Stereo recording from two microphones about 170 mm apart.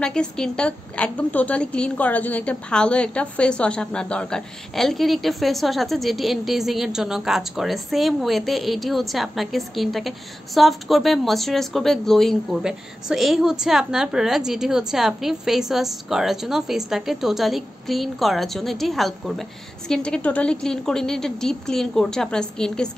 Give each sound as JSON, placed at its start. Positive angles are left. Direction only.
{"t": 0.0, "sound": "a woman's voice", "side_deg": 5}